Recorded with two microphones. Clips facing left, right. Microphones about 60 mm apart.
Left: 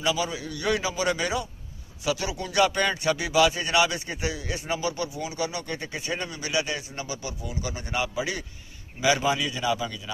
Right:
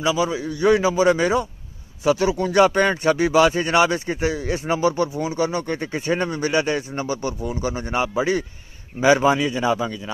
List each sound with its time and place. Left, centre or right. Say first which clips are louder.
0.0 s a man's voice: right 6 dB; right